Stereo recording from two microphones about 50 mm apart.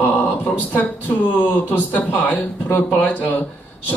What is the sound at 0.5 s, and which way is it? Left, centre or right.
Speech, left.